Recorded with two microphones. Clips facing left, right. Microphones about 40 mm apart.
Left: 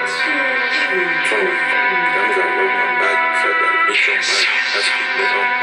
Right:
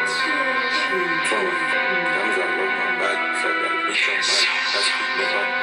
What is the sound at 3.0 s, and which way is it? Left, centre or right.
Music, left.